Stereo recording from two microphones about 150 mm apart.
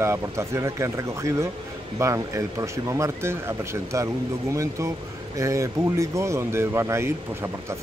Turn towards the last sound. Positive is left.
turn(degrees=-15)  # may be behind; listen again after turning